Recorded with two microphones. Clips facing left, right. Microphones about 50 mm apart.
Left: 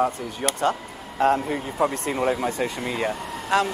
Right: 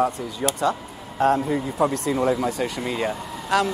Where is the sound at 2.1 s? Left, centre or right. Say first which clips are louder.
Right 2 dB; left.